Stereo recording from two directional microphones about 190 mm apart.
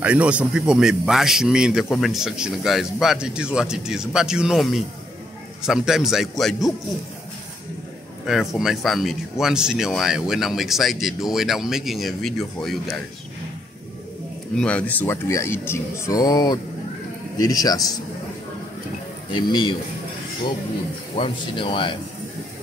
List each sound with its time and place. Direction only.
0.0 s a man's voice: 5° right (ahead or behind)
8.3 s a man's voice: centre (ahead or behind)
14.6 s speech: 5° left (ahead or behind)
19.3 s speech: 25° left (ahead or behind)
21.2 s speech: 25° left (ahead or behind)